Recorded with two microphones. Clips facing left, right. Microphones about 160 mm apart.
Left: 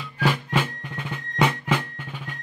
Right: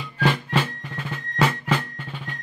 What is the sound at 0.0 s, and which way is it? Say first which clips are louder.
Music: right 1 dB; 5° left (ahead or behind).